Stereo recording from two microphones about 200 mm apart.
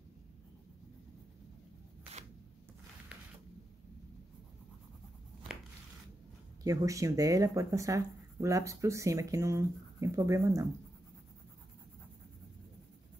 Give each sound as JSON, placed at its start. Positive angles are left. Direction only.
{"t": 6.6, "sound": "speech", "side_deg": -15}